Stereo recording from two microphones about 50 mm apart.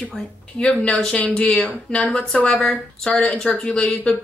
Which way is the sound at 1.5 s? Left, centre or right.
Centre.